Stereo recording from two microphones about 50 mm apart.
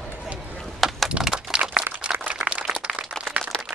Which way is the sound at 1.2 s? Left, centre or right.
Centre.